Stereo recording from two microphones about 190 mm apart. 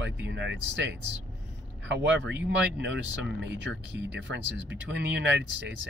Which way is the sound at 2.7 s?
70° right (ahead or behind).